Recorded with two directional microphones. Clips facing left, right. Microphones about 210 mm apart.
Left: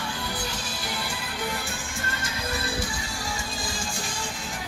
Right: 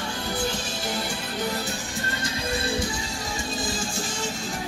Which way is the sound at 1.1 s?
40° right (ahead or behind).